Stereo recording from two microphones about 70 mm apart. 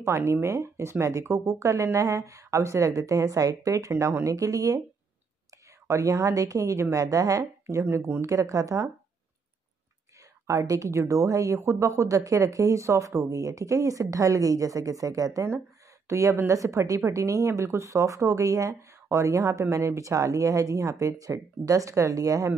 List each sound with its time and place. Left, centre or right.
0.0 s a woman's voice: right
3.9 s a woman's voice: right
5.9 s a woman's voice: right
10.4 s a woman's voice: right